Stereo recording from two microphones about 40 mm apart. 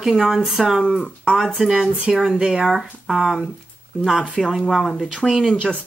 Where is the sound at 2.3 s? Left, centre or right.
Centre.